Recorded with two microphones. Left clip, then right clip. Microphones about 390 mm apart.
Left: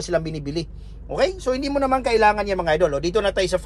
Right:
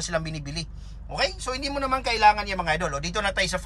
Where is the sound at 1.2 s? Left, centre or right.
Centre.